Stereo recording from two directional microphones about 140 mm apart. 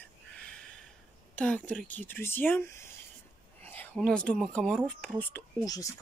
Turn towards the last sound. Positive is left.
turn(degrees=25)  # may be behind; listen again after turning